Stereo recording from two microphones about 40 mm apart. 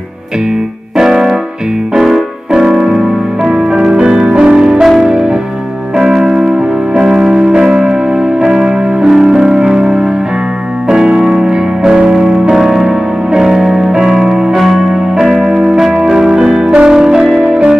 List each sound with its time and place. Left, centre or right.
0.9 s keyboard: centre
3.5 s music: centre
12.5 s music: centre
13.3 s music: centre